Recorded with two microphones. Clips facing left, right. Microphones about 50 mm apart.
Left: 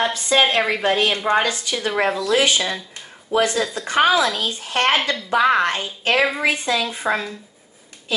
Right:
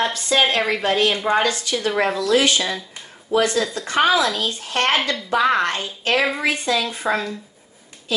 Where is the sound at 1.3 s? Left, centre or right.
Centre.